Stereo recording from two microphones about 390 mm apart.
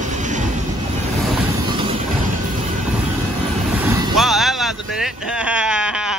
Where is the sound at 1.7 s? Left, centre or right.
Centre.